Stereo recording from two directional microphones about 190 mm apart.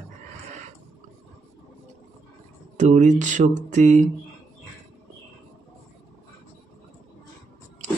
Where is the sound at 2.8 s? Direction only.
40° right (ahead or behind).